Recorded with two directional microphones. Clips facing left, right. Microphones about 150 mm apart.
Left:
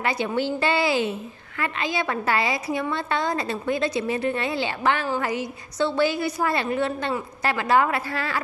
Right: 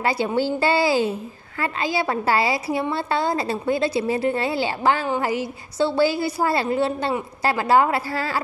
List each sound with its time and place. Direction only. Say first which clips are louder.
0.0 s a woman's voice: right 3 dB; 35° right (ahead or behind)